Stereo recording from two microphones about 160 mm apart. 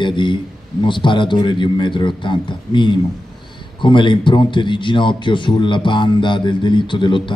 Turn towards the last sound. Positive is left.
turn(degrees=30)  # may be behind; listen again after turning